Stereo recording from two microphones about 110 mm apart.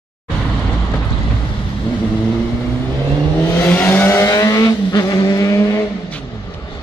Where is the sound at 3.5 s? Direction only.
20° left (ahead or behind).